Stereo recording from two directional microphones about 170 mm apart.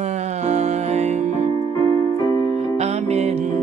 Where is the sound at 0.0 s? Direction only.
40° right (ahead or behind).